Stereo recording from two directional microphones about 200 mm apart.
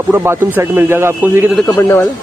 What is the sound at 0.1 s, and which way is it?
Speech, 10° right (ahead or behind).